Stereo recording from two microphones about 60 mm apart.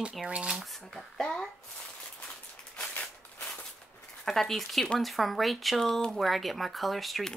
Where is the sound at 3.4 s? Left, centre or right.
Left.